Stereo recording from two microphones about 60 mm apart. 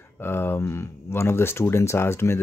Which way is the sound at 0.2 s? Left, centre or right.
Left.